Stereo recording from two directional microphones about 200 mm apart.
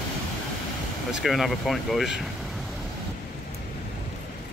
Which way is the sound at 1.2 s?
Centre (ahead or behind).